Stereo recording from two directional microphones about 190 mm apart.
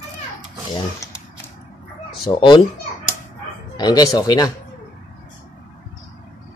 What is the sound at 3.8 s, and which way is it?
Speech, 20° left (ahead or behind).